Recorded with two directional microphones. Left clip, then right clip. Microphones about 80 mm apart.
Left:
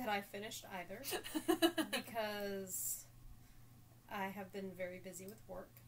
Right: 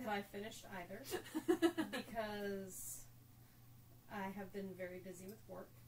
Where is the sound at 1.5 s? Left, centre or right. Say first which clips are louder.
Left 2 dB; left.